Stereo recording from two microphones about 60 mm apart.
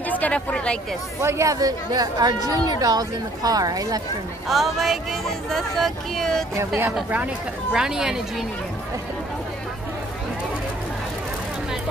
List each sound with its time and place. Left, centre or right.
0.1 s speech: left
1.2 s speech: right
4.5 s speech: centre
7.7 s speech: centre